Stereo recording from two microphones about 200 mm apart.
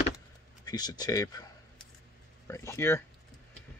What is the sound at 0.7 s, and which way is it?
Speech, 20° left (ahead or behind).